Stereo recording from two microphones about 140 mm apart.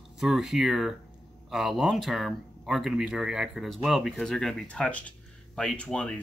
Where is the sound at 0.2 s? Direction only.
Centre (ahead or behind).